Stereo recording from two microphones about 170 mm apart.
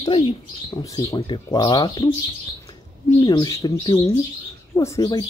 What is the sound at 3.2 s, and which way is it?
Speech, 25° left (ahead or behind).